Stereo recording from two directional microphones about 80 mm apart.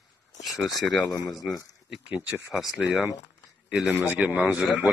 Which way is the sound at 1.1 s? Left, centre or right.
Left.